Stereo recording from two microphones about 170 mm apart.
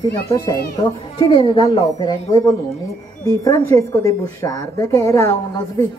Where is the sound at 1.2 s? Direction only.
30° left (ahead or behind).